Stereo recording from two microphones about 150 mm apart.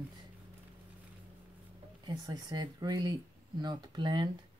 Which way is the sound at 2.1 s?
30° right (ahead or behind).